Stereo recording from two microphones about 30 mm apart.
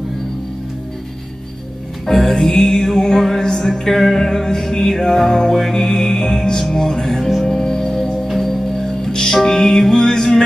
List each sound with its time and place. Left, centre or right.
2.1 s music: centre
8.4 s organ: centre
9.3 s music: centre